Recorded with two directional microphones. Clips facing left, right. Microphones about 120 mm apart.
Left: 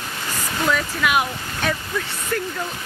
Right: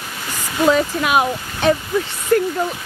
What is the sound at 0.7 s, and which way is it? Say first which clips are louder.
Speech: right 5 dB; 30° right (ahead or behind).